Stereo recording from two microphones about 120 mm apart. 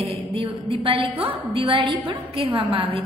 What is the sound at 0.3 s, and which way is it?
A woman's voice, 50° right (ahead or behind).